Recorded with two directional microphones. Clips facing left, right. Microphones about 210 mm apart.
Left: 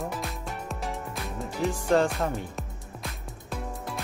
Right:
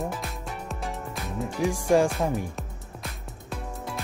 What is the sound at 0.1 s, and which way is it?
Music, centre (ahead or behind).